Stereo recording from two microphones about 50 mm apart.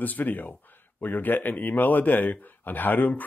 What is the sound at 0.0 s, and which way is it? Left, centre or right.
Speech, left.